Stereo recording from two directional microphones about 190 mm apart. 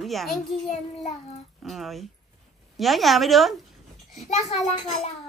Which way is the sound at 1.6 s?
Centre (ahead or behind).